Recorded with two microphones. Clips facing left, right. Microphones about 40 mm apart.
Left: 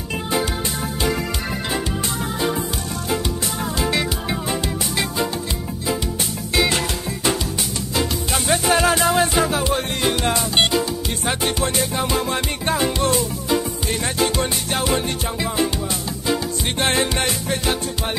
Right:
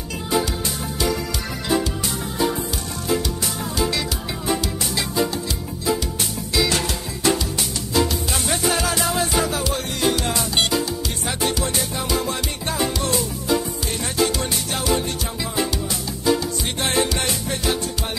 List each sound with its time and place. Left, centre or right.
0.3 s music: left
3.7 s music: left
6.5 s music: left
7.9 s music: left
16.7 s music: left